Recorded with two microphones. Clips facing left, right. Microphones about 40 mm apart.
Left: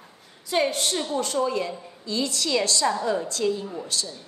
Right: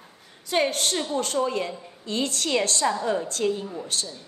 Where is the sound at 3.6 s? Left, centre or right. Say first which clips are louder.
Even; centre.